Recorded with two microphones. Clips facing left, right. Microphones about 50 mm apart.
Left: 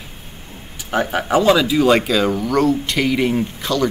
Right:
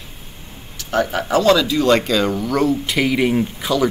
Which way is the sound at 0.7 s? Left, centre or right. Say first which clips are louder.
Even; centre.